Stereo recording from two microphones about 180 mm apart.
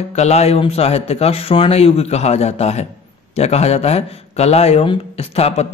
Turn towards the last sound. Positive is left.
turn(degrees=35)  # may be behind; listen again after turning